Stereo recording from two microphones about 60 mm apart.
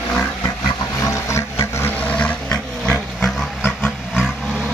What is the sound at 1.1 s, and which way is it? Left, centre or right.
Water, left.